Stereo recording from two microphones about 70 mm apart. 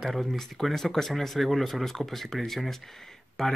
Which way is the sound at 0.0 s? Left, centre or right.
Centre.